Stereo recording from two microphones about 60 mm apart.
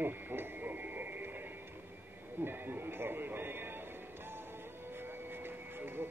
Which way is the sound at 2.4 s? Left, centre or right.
Right.